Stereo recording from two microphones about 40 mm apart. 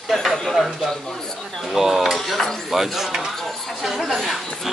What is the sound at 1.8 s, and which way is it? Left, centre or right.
Speech, centre.